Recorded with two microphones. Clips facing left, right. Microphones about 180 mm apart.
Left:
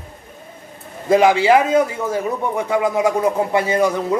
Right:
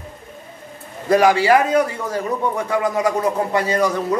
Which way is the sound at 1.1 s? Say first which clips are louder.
Left 1 dB; 20° left (ahead or behind).